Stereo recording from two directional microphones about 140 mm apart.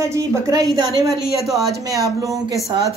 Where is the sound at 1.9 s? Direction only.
25° right (ahead or behind).